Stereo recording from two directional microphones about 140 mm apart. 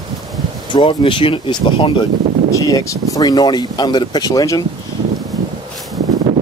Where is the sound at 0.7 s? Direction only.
35° left (ahead or behind).